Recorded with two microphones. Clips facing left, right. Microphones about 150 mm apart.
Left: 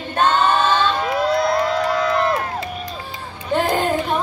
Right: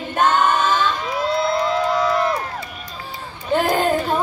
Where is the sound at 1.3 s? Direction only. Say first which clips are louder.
Right 1 dB; 55° left (ahead or behind).